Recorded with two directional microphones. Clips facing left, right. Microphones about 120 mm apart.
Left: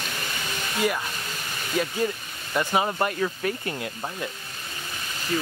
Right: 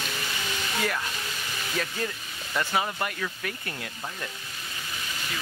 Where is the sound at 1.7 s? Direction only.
15° left (ahead or behind).